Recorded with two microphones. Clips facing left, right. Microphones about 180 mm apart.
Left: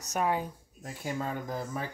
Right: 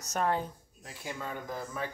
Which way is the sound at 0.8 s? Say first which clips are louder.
Left 5 dB; 40° left (ahead or behind).